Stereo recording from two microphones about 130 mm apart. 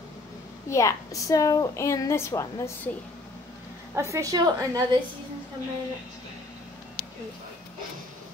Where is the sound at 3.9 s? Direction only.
20° right (ahead or behind).